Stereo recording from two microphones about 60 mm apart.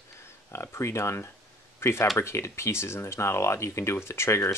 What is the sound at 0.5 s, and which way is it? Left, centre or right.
Speech, left.